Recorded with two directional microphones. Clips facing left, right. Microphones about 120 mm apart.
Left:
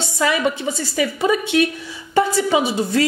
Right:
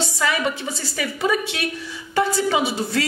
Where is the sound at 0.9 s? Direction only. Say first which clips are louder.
Left 3 dB; 20° left (ahead or behind).